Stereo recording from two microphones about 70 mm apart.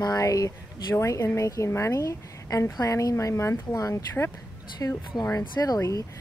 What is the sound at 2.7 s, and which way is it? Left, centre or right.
Speech, left.